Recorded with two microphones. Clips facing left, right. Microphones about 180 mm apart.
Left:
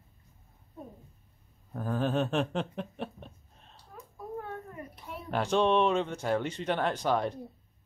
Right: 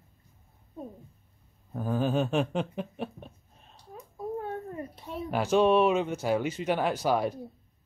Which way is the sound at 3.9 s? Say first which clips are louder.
Right 5 dB; 25° right (ahead or behind).